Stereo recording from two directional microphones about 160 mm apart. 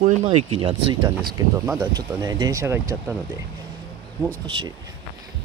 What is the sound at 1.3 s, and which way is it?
Speech, 20° right (ahead or behind).